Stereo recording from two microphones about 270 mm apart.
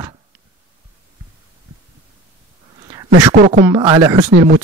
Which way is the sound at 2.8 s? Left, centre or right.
Centre.